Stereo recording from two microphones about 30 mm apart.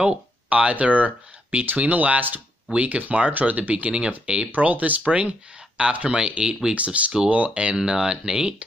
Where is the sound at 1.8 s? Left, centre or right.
Right.